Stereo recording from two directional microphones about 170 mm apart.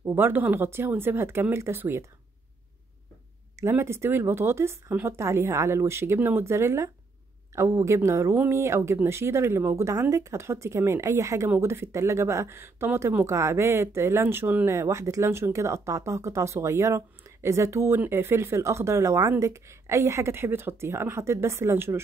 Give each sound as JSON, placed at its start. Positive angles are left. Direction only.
{"t": 0.0, "sound": "speech", "side_deg": -10}
{"t": 3.5, "sound": "speech", "side_deg": -15}